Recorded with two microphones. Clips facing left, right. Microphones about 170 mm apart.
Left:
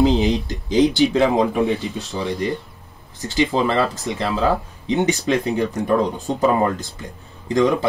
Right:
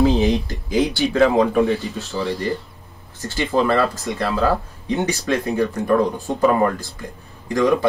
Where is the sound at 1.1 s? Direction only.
20° left (ahead or behind).